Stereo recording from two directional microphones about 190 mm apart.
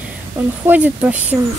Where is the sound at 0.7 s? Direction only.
10° right (ahead or behind).